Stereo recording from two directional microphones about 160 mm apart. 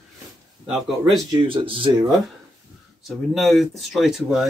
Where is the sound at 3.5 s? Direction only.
Centre (ahead or behind).